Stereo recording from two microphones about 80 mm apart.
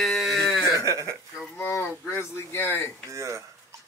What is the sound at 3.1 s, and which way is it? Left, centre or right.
Speech, right.